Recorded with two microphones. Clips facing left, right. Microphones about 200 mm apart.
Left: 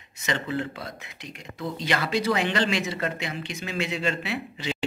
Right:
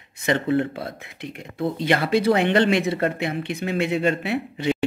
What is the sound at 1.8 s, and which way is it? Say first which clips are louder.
Speech: right 5 dB; 55° right (ahead or behind).